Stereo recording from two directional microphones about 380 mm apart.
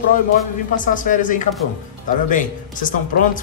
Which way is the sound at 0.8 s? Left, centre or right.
Left.